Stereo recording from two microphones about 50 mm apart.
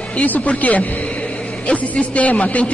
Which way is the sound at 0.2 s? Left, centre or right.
Left.